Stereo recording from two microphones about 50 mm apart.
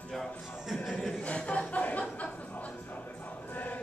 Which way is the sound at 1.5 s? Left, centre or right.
Left.